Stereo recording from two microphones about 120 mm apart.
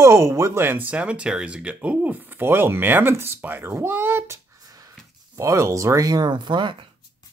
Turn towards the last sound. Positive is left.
turn(degrees=-40)  # may be behind; listen again after turning